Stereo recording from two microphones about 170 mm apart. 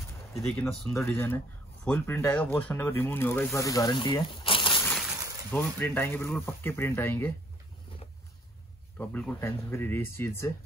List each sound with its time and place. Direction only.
0.4 s speech: 10° left (ahead or behind); by 4.8 s 30° left (ahead or behind)
4.8 s a sound: centre (ahead or behind)
5.5 s speech: 10° left (ahead or behind)
8.9 s speech: 10° left (ahead or behind)